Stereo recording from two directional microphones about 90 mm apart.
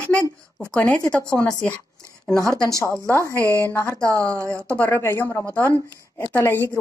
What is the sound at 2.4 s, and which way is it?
Speech, 35° right (ahead or behind).